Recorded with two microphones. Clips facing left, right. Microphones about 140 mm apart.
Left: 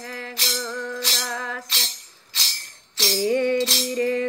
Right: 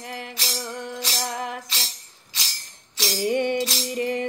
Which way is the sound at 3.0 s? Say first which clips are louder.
Left 2 dB; 15° right (ahead or behind).